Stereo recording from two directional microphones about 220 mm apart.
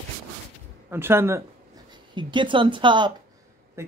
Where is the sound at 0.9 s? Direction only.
10° right (ahead or behind).